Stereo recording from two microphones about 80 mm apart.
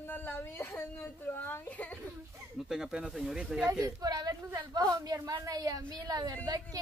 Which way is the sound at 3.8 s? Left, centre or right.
Right.